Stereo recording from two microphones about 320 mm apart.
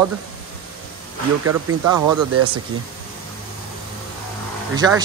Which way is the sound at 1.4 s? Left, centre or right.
Right.